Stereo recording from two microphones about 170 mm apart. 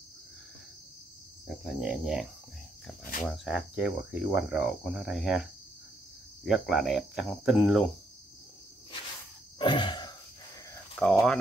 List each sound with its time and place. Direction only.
1.5 s speech: centre (ahead or behind)
9.6 s a sound: 25° left (ahead or behind)
11.0 s speech: 5° left (ahead or behind)